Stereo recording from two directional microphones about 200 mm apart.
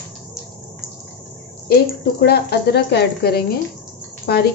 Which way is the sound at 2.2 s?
55° left (ahead or behind).